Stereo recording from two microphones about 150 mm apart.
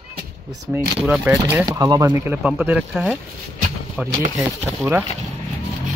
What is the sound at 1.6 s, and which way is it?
Speech, 25° right (ahead or behind).